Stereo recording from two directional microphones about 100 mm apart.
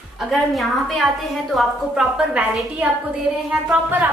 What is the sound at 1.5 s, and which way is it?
A woman's voice, 5° right (ahead or behind).